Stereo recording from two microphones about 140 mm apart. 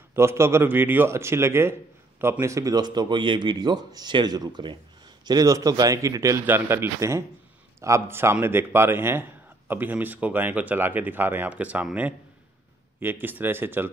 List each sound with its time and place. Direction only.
0.1 s a man's voice: 20° right (ahead or behind)